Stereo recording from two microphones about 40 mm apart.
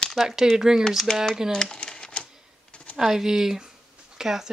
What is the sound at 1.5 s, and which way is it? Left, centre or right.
Crumpling, centre.